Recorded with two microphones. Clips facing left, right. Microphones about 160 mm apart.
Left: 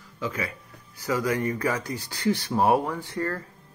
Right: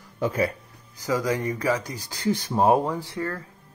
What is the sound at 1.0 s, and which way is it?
Speech, 15° right (ahead or behind).